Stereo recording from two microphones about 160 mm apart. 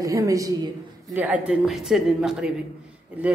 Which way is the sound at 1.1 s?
10° right (ahead or behind).